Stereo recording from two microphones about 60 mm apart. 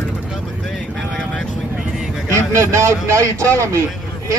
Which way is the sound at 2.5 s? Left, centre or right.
Right.